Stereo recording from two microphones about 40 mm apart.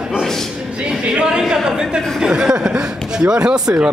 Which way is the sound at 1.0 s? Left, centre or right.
Right.